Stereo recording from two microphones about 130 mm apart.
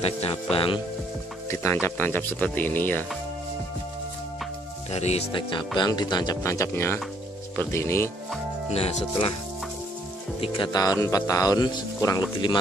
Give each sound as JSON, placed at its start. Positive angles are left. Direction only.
{"t": 0.0, "sound": "speech", "side_deg": 50}
{"t": 1.5, "sound": "speech", "side_deg": 20}
{"t": 4.9, "sound": "speech", "side_deg": 55}
{"t": 5.3, "sound": "speech", "side_deg": 40}
{"t": 8.7, "sound": "speech", "side_deg": 50}
{"t": 10.4, "sound": "speech", "side_deg": 35}